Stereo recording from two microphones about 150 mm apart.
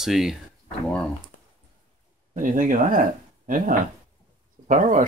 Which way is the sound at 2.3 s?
65° right (ahead or behind).